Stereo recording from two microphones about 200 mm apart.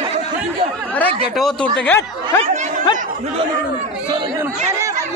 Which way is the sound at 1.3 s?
5° left (ahead or behind).